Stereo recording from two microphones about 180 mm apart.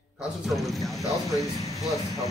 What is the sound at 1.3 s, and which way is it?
Speech, 20° left (ahead or behind).